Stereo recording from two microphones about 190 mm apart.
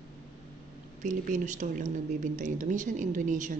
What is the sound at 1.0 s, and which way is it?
A woman's voice, 40° right (ahead or behind).